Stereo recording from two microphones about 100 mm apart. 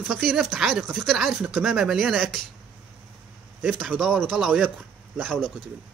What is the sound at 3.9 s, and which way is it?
Speech, 5° left (ahead or behind).